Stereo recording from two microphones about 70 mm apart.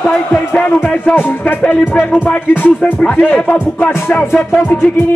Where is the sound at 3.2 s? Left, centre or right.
Left.